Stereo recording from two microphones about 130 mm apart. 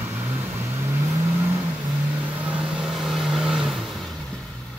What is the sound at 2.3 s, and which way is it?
Vehicle, 10° right (ahead or behind).